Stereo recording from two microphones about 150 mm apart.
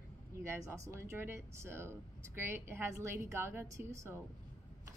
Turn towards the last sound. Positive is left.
turn(degrees=-20)  # may be behind; listen again after turning